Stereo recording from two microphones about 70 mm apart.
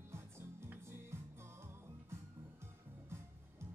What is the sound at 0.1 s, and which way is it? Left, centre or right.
Music, right.